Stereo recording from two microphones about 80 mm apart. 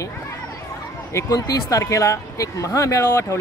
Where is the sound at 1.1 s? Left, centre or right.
Left.